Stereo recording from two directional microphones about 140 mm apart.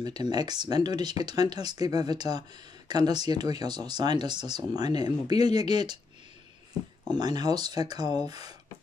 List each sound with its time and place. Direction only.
0.0 s speech: 30° right (ahead or behind)
7.1 s speech: 30° right (ahead or behind)